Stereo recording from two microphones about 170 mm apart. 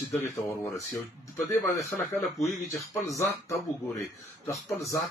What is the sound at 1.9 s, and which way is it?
Speech, centre (ahead or behind).